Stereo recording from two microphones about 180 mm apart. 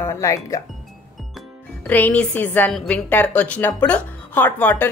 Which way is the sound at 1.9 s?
10° left (ahead or behind).